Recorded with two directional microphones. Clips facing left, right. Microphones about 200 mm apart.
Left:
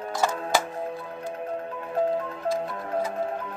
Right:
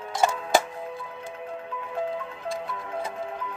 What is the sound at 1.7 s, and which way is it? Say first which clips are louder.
Music: left 5 dB; 45° left (ahead or behind).